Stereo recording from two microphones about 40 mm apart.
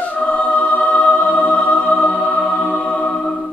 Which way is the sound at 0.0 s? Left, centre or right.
Left.